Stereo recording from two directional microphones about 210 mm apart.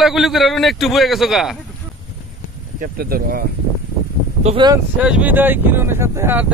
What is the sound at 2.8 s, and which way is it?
Speech, 45° right (ahead or behind).